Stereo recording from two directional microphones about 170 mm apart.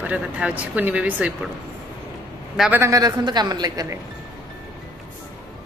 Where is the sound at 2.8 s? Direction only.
20° right (ahead or behind).